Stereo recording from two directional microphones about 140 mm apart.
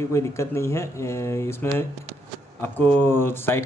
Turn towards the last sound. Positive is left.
turn(degrees=15)  # may be behind; listen again after turning